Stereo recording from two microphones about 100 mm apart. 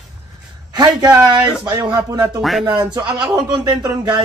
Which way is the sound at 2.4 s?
Centre (ahead or behind).